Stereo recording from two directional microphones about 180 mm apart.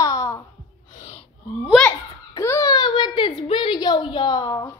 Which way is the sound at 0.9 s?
40° left (ahead or behind).